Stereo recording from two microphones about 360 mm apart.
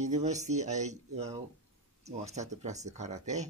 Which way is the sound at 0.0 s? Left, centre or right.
Centre.